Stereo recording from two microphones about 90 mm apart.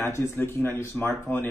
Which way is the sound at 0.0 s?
25° left (ahead or behind).